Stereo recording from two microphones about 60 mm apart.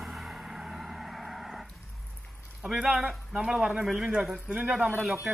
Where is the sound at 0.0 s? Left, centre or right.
Centre.